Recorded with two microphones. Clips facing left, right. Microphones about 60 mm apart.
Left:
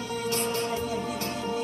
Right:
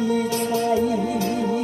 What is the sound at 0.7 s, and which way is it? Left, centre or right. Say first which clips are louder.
Music: right 9 dB; right.